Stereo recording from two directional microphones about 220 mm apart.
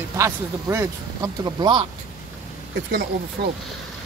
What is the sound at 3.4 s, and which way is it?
Speech, 50° right (ahead or behind).